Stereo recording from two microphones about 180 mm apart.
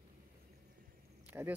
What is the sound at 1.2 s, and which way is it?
Cricket, 10° right (ahead or behind).